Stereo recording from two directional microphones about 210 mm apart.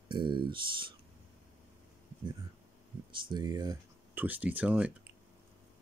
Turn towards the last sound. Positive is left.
turn(degrees=-5)  # may be behind; listen again after turning